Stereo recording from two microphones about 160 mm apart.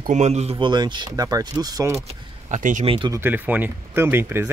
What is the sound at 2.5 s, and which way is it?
Speech, 50° right (ahead or behind).